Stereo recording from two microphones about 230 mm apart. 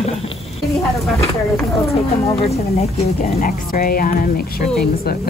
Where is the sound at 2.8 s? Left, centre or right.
Left.